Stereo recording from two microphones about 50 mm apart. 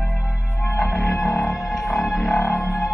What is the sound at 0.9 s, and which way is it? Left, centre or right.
Music, left.